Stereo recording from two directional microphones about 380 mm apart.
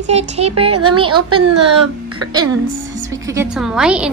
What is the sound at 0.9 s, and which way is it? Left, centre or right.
Speech, centre.